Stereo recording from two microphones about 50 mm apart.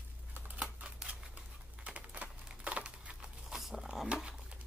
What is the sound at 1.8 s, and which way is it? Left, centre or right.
Typing, right.